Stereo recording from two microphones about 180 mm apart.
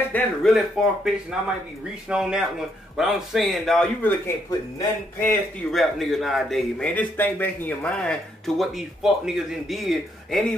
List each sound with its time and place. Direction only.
0.1 s a man's voice: centre (ahead or behind)
4.5 s speech: 15° left (ahead or behind)
5.7 s a man's voice: centre (ahead or behind)